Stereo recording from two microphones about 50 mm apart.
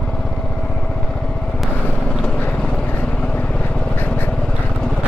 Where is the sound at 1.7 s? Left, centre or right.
Left.